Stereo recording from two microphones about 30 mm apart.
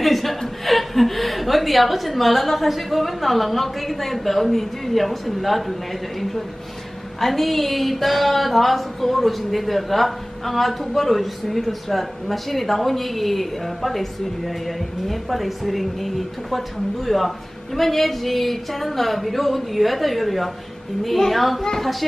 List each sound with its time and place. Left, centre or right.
0.0 s speech: centre
7.2 s speech: centre